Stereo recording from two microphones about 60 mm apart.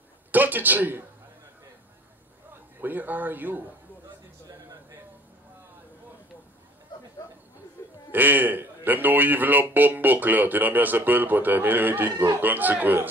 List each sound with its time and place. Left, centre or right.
0.3 s a man's voice: right
2.8 s a man's voice: right
8.1 s a man's voice: right